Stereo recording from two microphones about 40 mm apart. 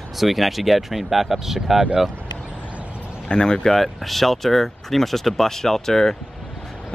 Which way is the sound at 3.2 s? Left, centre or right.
Centre.